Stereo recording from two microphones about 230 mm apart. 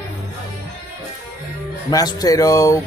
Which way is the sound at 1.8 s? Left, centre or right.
Centre.